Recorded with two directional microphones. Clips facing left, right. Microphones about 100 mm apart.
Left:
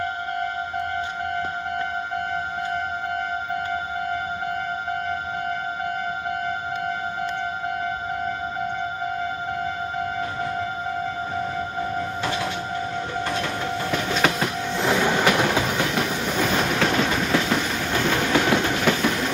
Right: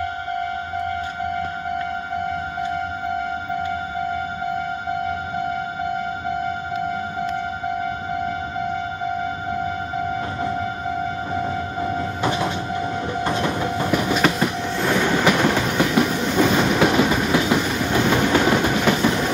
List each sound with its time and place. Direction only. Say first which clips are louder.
12.2 s train: right 4 dB; 20° right (ahead or behind)
14.8 s train: right 1 dB; 10° left (ahead or behind); by 18.9 s 5° right (ahead or behind)